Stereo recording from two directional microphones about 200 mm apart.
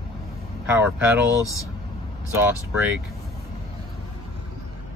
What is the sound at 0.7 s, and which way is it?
Speech, 5° right (ahead or behind).